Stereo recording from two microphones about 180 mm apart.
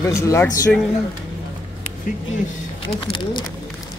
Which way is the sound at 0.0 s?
15° left (ahead or behind).